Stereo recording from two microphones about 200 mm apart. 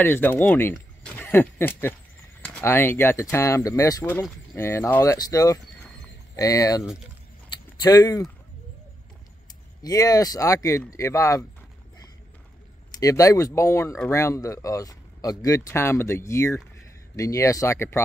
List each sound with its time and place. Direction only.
0.0 s speech: 10° left (ahead or behind)
7.4 s a sound: 20° left (ahead or behind)
9.8 s speech: 20° left (ahead or behind)
13.0 s speech: 15° left (ahead or behind)